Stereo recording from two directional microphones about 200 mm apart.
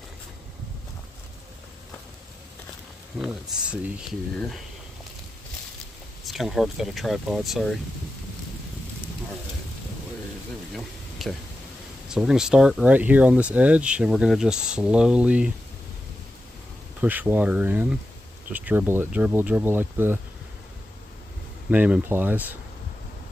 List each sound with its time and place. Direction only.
3.2 s speech: 5° right (ahead or behind)
6.2 s speech: centre (ahead or behind)
10.7 s a sound: centre (ahead or behind)
12.1 s speech: centre (ahead or behind)
17.0 s speech: 10° right (ahead or behind)
21.6 s speech: 5° right (ahead or behind)